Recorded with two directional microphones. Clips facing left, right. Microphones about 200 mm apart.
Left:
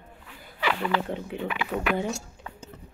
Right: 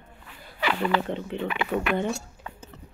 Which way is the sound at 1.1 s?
10° left (ahead or behind).